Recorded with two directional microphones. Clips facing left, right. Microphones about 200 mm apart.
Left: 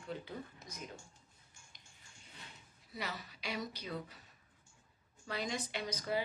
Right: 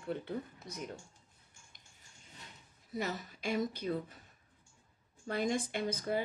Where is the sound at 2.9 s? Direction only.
45° right (ahead or behind).